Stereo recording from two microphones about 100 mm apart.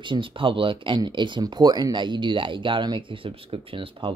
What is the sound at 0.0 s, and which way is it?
Speech, 55° right (ahead or behind).